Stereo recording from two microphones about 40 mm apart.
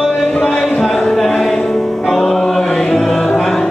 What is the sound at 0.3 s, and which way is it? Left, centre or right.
Music, centre.